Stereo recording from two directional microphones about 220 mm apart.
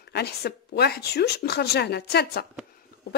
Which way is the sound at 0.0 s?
45° left (ahead or behind).